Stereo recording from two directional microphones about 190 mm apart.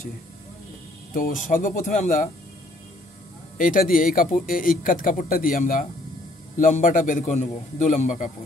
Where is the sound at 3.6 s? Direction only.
45° left (ahead or behind).